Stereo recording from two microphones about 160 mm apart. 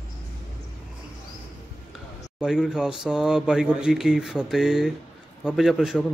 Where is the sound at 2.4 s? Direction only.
5° right (ahead or behind).